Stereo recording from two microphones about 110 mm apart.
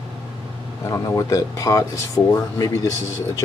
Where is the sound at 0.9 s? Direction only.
30° left (ahead or behind).